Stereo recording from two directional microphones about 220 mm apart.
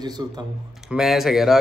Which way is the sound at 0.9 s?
Centre (ahead or behind).